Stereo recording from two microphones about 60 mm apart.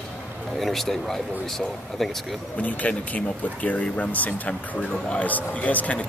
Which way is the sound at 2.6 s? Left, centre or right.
Left.